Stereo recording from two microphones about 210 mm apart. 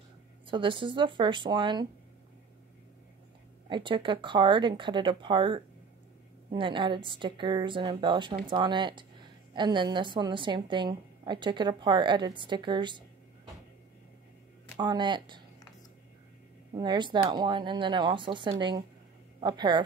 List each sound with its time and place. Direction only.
0.5 s a woman's voice: 25° right (ahead or behind)
3.6 s a woman's voice: 20° right (ahead or behind)
14.8 s a woman's voice: 20° right (ahead or behind)
16.7 s a woman's voice: 20° right (ahead or behind)